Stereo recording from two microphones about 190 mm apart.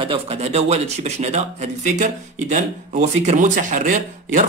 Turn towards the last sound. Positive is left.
turn(degrees=-45)  # may be behind; listen again after turning